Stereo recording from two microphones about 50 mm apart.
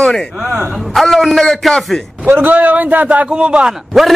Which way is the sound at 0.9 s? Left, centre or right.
Centre.